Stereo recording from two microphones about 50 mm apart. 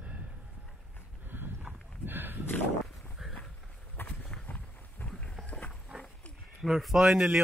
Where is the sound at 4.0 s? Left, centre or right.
Left.